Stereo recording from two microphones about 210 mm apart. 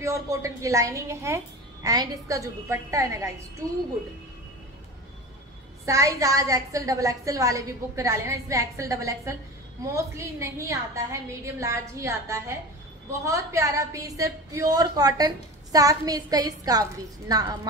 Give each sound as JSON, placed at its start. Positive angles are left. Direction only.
{"t": 0.0, "sound": "a woman's voice", "side_deg": -15}
{"t": 5.9, "sound": "a woman's voice", "side_deg": -15}